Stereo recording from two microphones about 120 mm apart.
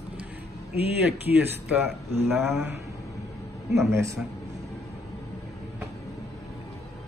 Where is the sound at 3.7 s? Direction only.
25° right (ahead or behind).